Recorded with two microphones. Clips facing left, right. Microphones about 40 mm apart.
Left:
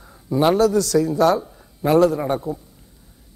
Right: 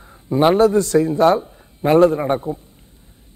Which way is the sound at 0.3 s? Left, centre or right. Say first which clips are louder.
Right 3 dB; right.